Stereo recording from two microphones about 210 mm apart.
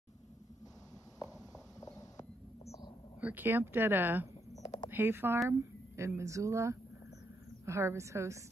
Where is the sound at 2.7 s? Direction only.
20° left (ahead or behind).